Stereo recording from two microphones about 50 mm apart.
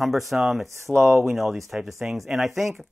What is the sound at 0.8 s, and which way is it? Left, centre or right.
Speech, right.